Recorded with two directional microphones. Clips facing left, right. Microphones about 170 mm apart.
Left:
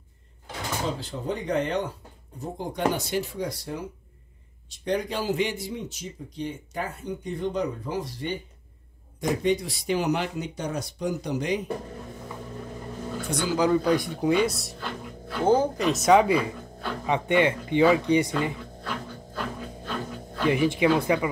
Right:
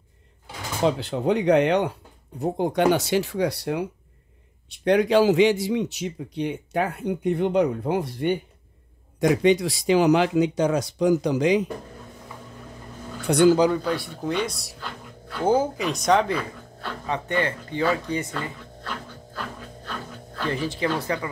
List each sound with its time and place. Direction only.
0.8 s a man's voice: 70° right (ahead or behind)
9.2 s speech: 85° right
13.3 s speech: 90° right
13.8 s speech: 15° left (ahead or behind)
14.1 s speech: 5° left (ahead or behind)
15.4 s speech: 10° right (ahead or behind)
15.9 s speech: 5° left (ahead or behind)